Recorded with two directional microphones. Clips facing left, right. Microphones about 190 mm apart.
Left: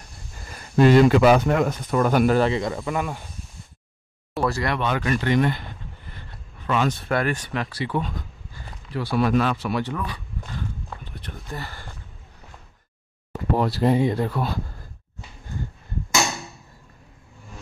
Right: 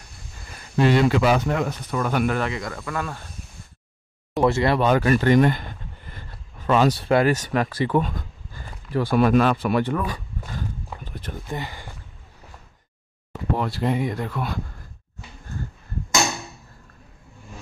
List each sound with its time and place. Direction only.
0.7 s speech: 45° left (ahead or behind); by 3.3 s 15° left (ahead or behind)
4.4 s speech: 25° right (ahead or behind)
4.7 s speech: 40° right (ahead or behind)
6.7 s speech: 40° right (ahead or behind)
7.3 s speech: 45° right (ahead or behind)
11.1 s a sound: 45° right (ahead or behind)
11.4 s speech: 15° right (ahead or behind)
13.6 s speech: 35° left (ahead or behind)